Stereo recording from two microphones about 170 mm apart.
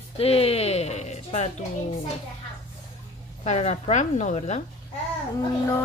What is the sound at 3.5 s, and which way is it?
A woman's voice, 40° left (ahead or behind).